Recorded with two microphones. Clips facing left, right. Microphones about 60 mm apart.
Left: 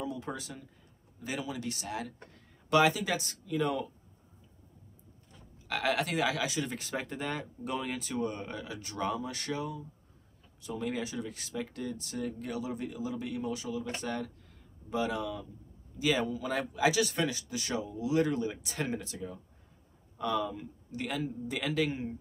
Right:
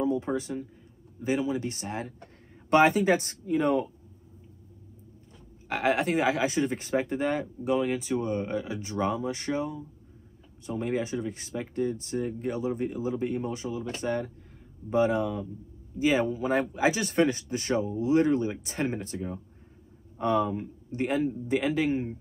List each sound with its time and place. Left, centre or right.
0.0 s speech: right
5.7 s speech: right